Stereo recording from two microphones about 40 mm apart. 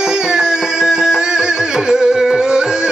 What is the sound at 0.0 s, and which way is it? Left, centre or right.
Music, centre.